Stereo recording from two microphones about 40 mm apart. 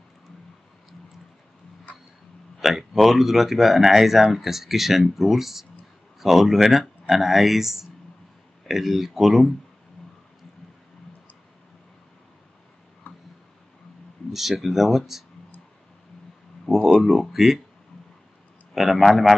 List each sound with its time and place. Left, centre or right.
2.6 s speech: centre
13.0 s tick: left
14.3 s speech: centre
16.6 s speech: centre
18.8 s speech: centre